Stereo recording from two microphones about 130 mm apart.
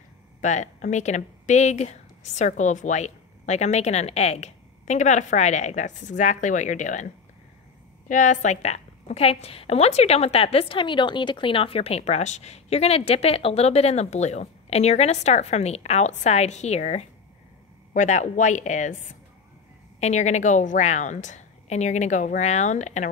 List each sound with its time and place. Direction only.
0.4 s a woman's voice: 70° left (ahead or behind)
8.1 s a woman's voice: 75° left (ahead or behind)
20.0 s a woman's voice: 60° left (ahead or behind)